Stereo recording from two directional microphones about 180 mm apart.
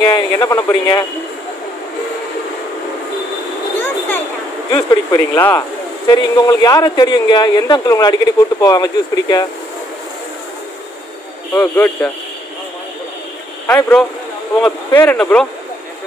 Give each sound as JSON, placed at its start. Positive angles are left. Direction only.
{"t": 0.0, "sound": "a man's voice", "side_deg": 20}
{"t": 4.6, "sound": "a man's voice", "side_deg": 20}
{"t": 11.5, "sound": "speech", "side_deg": 15}
{"t": 13.7, "sound": "speech", "side_deg": 10}